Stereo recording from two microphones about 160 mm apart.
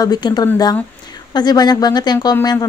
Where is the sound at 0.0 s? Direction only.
25° left (ahead or behind).